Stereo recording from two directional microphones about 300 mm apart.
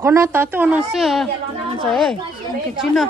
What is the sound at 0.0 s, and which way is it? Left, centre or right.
A woman's voice, centre.